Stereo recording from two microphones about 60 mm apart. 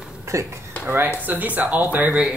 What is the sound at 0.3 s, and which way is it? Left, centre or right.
Speech, right.